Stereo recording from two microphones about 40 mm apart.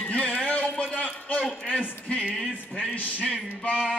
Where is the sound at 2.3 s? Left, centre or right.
Centre.